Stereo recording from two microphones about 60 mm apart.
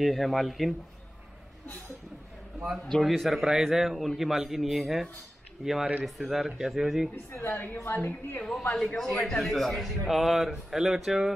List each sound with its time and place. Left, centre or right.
0.0 s a man's voice: centre
3.0 s a man's voice: centre
7.4 s a woman's voice: left
8.5 s a man's voice: centre